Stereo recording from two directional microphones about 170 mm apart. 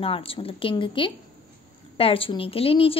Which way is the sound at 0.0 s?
35° left (ahead or behind).